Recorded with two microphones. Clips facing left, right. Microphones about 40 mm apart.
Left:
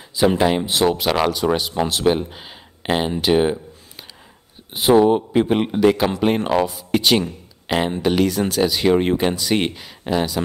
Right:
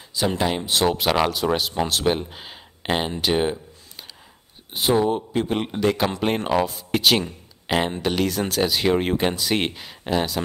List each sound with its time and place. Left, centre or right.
0.1 s a man's voice: centre
4.7 s speech: centre
5.0 s a man's voice: left; by 10.4 s centre